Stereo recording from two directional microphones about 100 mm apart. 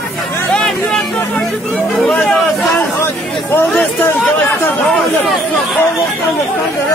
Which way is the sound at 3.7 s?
10° left (ahead or behind).